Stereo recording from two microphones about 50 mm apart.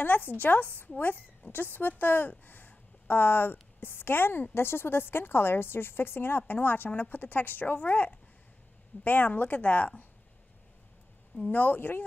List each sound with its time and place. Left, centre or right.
0.0 s a woman's voice: left
11.5 s a woman's voice: left